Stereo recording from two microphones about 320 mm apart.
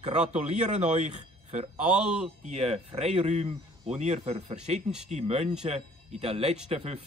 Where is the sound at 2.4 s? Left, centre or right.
Centre.